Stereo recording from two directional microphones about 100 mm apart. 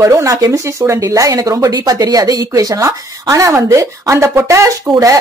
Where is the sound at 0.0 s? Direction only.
30° right (ahead or behind).